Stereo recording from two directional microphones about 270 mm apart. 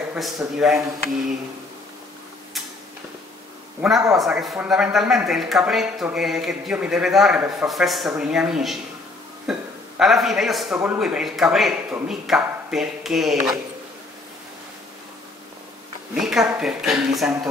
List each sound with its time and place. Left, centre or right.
0.1 s speech: centre
3.8 s speech: centre
16.2 s speech: centre